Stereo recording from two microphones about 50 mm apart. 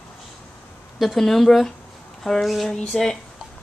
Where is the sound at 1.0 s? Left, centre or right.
Centre.